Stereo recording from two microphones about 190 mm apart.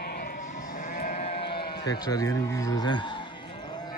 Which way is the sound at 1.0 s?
40° left (ahead or behind).